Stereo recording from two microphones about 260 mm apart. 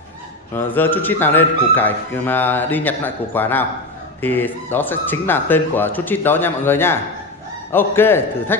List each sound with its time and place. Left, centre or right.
0.5 s speech: centre